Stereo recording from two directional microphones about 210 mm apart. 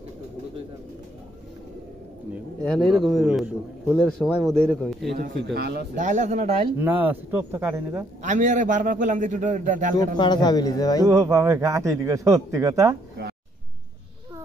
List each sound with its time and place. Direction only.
2.6 s a man's voice: centre (ahead or behind)
5.1 s speech: 50° right (ahead or behind)
5.9 s a man's voice: 35° right (ahead or behind)
6.8 s speech: 10° right (ahead or behind)
8.2 s a man's voice: 35° right (ahead or behind)
9.9 s a man's voice: 20° left (ahead or behind)
11.1 s speech: 15° right (ahead or behind)